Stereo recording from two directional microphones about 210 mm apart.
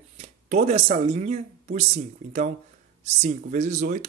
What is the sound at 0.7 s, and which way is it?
Speech, 30° right (ahead or behind).